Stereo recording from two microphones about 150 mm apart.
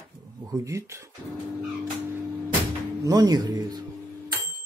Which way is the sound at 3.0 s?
25° right (ahead or behind).